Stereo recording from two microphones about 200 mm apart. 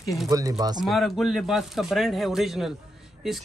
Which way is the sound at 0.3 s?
15° right (ahead or behind).